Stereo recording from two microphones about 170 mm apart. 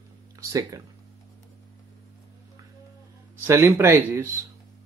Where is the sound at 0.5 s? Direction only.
20° right (ahead or behind).